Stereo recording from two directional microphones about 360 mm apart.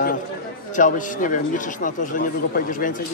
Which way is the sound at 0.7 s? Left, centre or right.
Left.